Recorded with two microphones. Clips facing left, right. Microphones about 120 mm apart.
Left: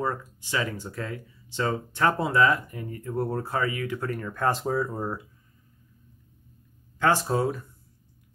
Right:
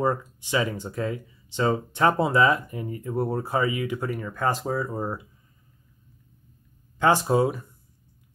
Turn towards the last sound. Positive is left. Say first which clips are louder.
# right 4 dB
turn(degrees=-15)  # may be behind; listen again after turning